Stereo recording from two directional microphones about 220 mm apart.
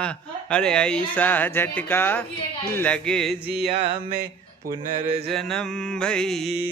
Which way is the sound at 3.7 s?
25° right (ahead or behind).